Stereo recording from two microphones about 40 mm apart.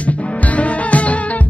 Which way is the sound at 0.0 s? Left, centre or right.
Left.